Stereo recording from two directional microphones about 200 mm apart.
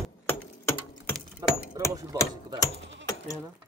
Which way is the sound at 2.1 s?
20° right (ahead or behind).